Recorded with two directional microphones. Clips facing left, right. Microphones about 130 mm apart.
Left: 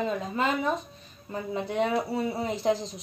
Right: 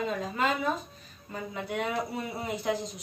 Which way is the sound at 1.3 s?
25° left (ahead or behind).